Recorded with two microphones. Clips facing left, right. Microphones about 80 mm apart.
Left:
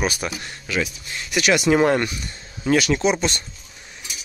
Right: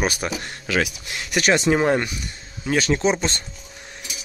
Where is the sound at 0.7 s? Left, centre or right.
Right.